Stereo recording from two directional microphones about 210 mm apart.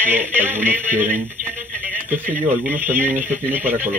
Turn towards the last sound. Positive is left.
turn(degrees=-10)  # may be behind; listen again after turning